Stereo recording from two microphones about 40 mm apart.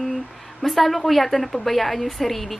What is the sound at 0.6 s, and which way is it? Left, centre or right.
A woman's voice, centre.